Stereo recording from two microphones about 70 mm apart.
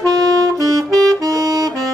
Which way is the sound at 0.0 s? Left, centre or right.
Right.